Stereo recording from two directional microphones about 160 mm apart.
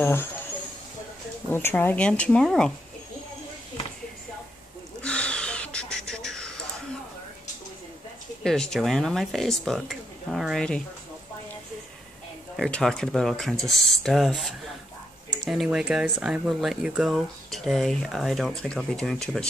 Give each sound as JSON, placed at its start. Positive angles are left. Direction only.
{"t": 0.0, "sound": "speech", "side_deg": 15}
{"t": 1.5, "sound": "speech", "side_deg": 15}
{"t": 5.0, "sound": "a sound", "side_deg": 5}
{"t": 8.5, "sound": "speech", "side_deg": 5}
{"t": 12.5, "sound": "speech", "side_deg": 0}